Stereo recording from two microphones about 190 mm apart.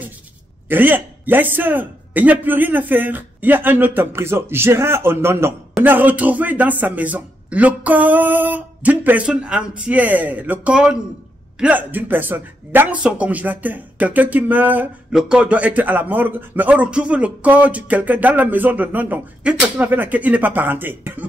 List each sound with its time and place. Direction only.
0.7 s speech: 10° right (ahead or behind)